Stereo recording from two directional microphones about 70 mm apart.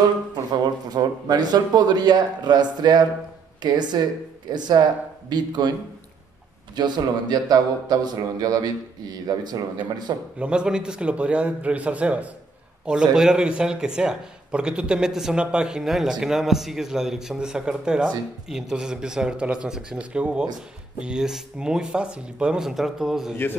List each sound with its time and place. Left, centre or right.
0.5 s speech: right
6.7 s a man's voice: right
10.4 s speech: centre
13.1 s speech: centre